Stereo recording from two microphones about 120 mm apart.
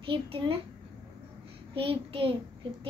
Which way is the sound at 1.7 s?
50° right (ahead or behind).